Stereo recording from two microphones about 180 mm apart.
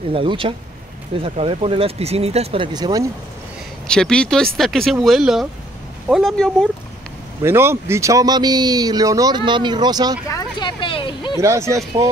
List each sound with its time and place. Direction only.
0.1 s speech: 30° right (ahead or behind)
3.8 s speech: 5° left (ahead or behind)
7.4 s speech: 15° right (ahead or behind)
10.3 s speech: 25° left (ahead or behind)
11.3 s speech: 15° right (ahead or behind)